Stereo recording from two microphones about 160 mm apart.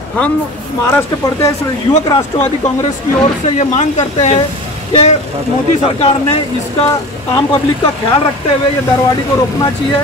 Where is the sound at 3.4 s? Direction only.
45° left (ahead or behind).